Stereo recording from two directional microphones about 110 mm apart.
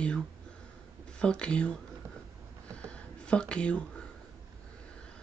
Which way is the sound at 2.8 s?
10° left (ahead or behind).